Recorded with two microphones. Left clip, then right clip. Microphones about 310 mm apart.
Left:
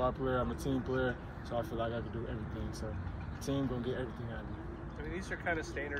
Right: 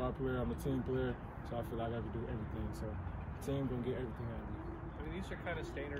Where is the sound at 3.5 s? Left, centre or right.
Centre.